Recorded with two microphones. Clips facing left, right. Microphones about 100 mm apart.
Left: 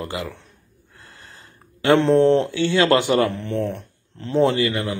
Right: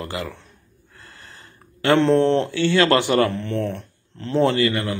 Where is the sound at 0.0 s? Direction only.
15° left (ahead or behind).